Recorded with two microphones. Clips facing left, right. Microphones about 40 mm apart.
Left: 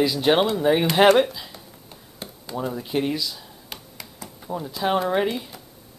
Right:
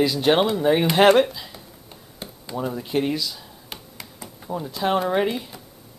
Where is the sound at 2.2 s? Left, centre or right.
Centre.